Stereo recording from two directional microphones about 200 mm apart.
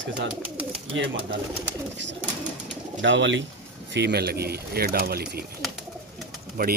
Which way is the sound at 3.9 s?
55° right (ahead or behind).